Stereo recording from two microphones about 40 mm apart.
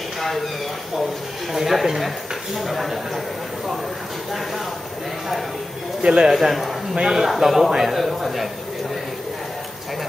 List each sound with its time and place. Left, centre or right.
1.5 s speech: centre
6.0 s a man's voice: right
6.3 s speech: centre